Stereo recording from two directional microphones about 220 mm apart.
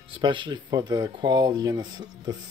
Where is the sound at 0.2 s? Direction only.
20° right (ahead or behind).